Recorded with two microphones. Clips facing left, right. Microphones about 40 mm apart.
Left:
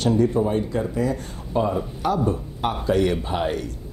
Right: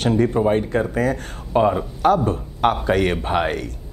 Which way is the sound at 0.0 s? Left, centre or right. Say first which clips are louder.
Right 2 dB; right.